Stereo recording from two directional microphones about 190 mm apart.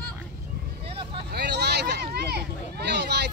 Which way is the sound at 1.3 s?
60° right (ahead or behind).